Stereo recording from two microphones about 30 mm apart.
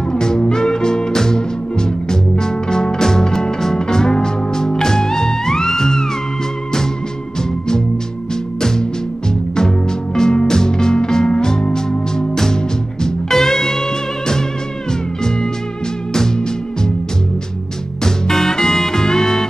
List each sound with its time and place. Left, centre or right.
0.1 s music: left
8.5 s music: centre
18.0 s music: centre